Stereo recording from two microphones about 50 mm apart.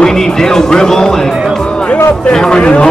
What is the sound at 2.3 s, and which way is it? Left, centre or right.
Speech, centre.